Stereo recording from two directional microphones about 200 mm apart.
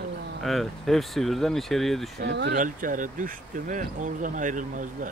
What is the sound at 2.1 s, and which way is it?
Speech, 60° right (ahead or behind).